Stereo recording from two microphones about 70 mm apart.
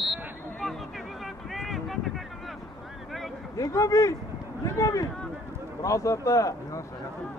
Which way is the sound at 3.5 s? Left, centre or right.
Left.